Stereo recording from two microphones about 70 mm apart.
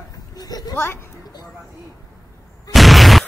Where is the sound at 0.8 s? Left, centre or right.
Left.